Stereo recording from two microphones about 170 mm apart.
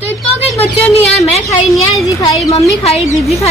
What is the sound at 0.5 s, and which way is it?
Speech, 40° left (ahead or behind).